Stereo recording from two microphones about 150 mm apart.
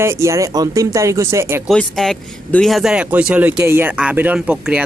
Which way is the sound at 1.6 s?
Centre (ahead or behind).